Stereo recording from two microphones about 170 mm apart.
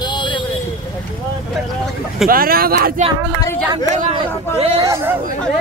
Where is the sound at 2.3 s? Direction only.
60° right (ahead or behind).